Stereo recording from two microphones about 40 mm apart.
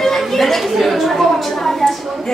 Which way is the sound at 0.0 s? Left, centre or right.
Centre.